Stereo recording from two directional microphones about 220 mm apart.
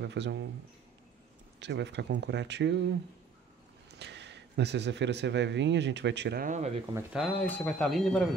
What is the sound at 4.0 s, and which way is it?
Speech, 50° right (ahead or behind).